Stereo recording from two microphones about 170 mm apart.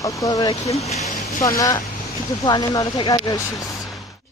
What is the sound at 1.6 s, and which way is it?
Speech, 20° left (ahead or behind).